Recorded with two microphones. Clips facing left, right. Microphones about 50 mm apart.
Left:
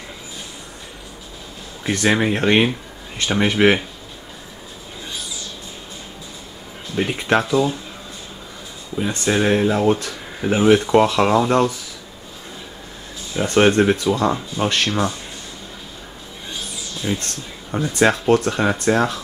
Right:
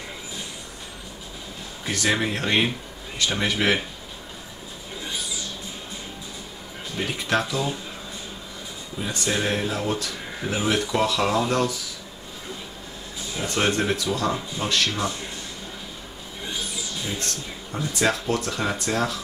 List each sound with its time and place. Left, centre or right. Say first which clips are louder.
1.9 s speech: left 6 dB; left
7.1 s speech: left 6 dB; left
9.0 s speech: left 7 dB; left
13.4 s speech: left 9 dB; left
17.2 s speech: even; left